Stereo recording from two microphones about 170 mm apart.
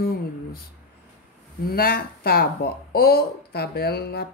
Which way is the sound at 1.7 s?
65° left (ahead or behind).